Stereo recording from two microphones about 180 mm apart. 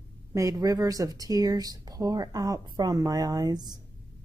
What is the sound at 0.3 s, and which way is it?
Speech, 20° right (ahead or behind).